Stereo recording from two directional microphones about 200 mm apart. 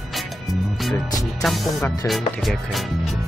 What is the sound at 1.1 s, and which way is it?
Speech, 15° left (ahead or behind).